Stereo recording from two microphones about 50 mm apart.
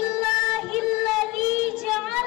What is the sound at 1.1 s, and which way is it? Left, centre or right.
Child singing, centre.